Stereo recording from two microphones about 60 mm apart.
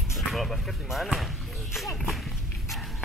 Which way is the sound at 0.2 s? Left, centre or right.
Centre.